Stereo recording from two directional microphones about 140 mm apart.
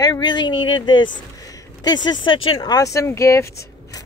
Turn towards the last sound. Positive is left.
turn(degrees=20)  # may be behind; listen again after turning